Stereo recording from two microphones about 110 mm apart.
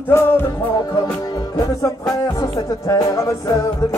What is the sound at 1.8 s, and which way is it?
Music, 30° left (ahead or behind).